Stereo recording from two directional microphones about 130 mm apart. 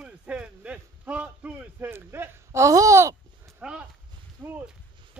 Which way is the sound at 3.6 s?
5° right (ahead or behind).